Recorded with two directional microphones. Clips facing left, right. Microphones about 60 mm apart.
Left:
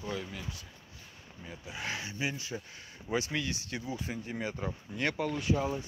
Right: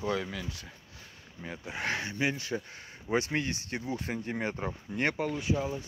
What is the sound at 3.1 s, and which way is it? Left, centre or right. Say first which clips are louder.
Speech: right 3 dB; right.